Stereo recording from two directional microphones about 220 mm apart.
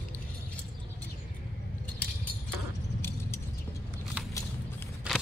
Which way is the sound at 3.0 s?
10° left (ahead or behind).